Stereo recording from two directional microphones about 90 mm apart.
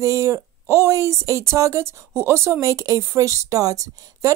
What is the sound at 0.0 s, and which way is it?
Speech, 35° right (ahead or behind).